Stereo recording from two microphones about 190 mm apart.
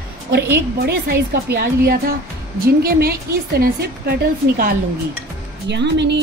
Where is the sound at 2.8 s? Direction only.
55° right (ahead or behind).